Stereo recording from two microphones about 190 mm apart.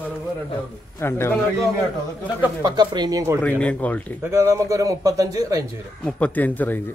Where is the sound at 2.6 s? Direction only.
20° right (ahead or behind).